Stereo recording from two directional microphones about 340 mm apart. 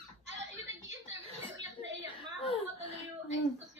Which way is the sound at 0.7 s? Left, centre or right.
Centre.